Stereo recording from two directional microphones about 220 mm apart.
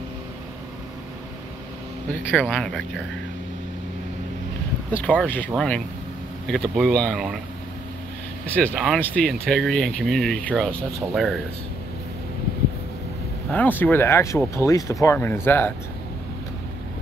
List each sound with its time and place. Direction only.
2.3 s speech: 5° left (ahead or behind)
5.0 s speech: 5° left (ahead or behind)
6.5 s speech: 5° left (ahead or behind)
8.5 s speech: 5° left (ahead or behind)
13.5 s speech: 5° left (ahead or behind)